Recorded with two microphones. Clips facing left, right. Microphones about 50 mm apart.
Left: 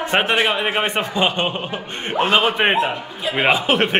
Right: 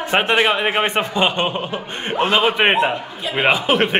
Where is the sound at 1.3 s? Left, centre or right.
Centre.